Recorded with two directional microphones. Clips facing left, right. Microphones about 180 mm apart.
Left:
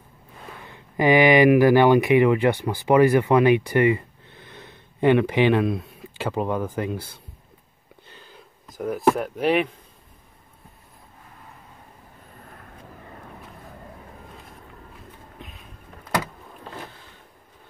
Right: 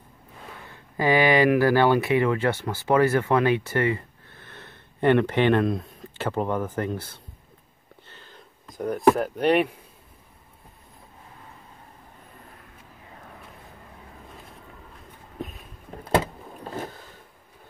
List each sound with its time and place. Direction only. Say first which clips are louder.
0.7 s speech: left 4 dB; 15° left (ahead or behind)
8.1 s a sound: left 2 dB; 15° left (ahead or behind)
8.6 s speech: right 1 dB; 5° left (ahead or behind)
15.3 s a sound: right 7 dB; 45° right (ahead or behind)
16.0 s vehicle: right 4 dB; 25° right (ahead or behind)
16.6 s boat: right 5 dB; 45° right (ahead or behind)